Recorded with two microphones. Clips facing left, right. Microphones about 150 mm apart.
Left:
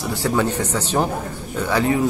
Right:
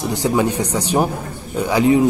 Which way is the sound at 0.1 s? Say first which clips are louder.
Right 2 dB; 15° right (ahead or behind).